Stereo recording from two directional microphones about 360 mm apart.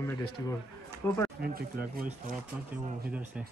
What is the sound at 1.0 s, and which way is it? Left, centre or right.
Speech, centre.